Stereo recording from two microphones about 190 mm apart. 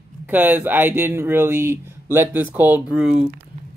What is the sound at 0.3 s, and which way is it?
Speech, 10° right (ahead or behind).